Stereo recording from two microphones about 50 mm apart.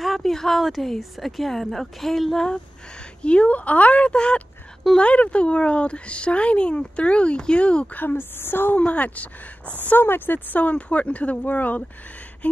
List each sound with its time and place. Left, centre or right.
0.0 s speech: centre
3.2 s speech: left
7.9 s a woman's voice: left
8.7 s speech: left
9.8 s speech: left